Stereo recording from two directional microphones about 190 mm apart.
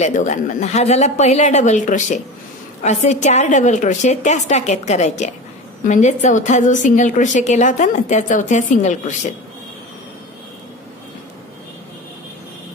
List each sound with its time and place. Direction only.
0.0 s a woman's voice: 40° left (ahead or behind)